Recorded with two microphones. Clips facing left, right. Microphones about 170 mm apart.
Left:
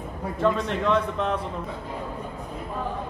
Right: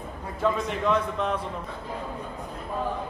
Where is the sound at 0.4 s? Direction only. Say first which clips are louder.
Left 2 dB; centre (ahead or behind).